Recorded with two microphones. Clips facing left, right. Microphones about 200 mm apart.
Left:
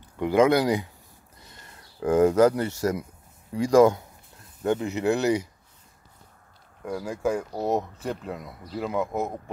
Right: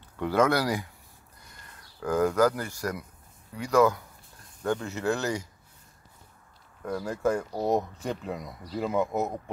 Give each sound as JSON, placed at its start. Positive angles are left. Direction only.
{"t": 0.2, "sound": "speech", "side_deg": 15}
{"t": 4.6, "sound": "speech", "side_deg": 20}
{"t": 6.8, "sound": "speech", "side_deg": 10}